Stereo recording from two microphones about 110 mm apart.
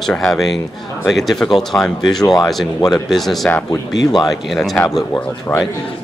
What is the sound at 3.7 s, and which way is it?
Speech, 35° left (ahead or behind).